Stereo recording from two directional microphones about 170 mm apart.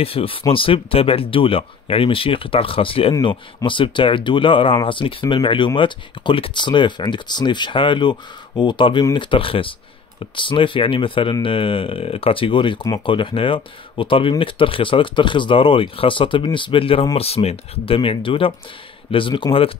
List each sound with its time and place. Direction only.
0.0 s speech: 35° left (ahead or behind)